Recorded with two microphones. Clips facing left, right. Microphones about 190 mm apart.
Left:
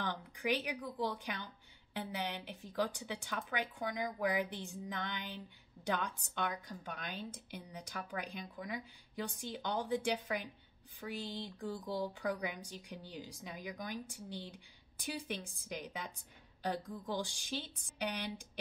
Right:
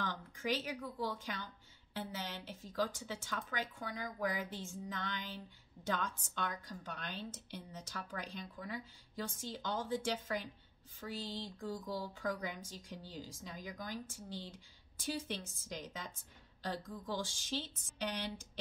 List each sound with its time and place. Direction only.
0.0 s a woman's voice: 15° left (ahead or behind)